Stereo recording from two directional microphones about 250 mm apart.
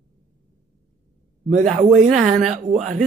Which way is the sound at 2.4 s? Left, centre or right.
Right.